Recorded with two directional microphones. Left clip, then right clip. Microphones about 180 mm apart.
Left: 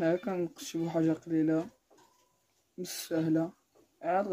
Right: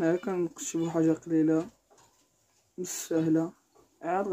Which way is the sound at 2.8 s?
10° left (ahead or behind).